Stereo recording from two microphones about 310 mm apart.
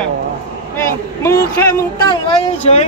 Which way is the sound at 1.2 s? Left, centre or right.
Centre.